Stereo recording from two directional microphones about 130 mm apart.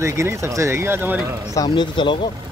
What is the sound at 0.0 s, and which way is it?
Speech, 20° right (ahead or behind).